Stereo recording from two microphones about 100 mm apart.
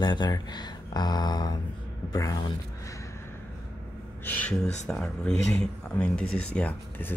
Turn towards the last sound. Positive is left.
turn(degrees=15)  # may be behind; listen again after turning